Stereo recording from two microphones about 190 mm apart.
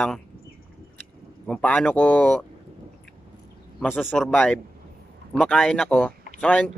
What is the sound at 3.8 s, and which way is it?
Speech, centre (ahead or behind).